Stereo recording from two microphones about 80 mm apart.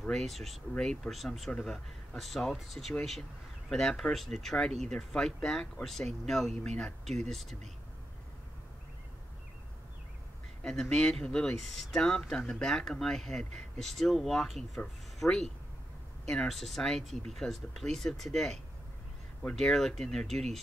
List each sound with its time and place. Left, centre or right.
0.0 s speech: centre
10.6 s speech: centre